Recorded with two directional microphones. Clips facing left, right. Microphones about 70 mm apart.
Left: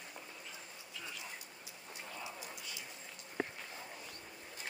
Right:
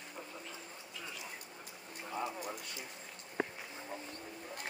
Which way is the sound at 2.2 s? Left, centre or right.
Right.